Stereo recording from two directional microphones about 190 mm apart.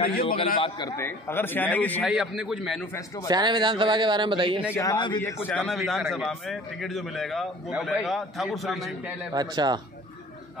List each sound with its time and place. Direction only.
0.6 s a man's voice: 20° left (ahead or behind)
2.0 s a man's voice: 5° right (ahead or behind)
3.3 s a man's voice: 20° right (ahead or behind)
4.7 s a man's voice: 20° left (ahead or behind)
5.2 s a man's voice: 10° left (ahead or behind)
9.3 s a man's voice: 20° right (ahead or behind)